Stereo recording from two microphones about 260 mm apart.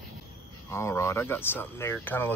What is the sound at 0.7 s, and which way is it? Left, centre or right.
Speech, centre.